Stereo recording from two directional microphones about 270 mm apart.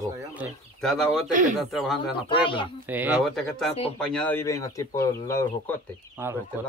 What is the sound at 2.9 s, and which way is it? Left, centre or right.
A woman's voice, centre.